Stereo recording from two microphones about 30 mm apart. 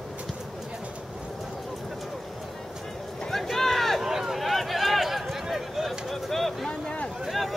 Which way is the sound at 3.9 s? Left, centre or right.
Centre.